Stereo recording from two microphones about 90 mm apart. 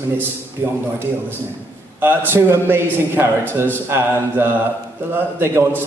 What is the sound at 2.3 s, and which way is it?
A man's voice, 25° right (ahead or behind).